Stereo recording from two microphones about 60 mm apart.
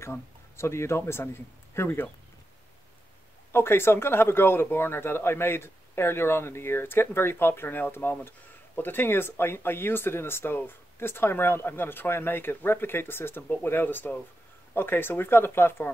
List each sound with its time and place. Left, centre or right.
0.0 s speech: left
3.5 s speech: left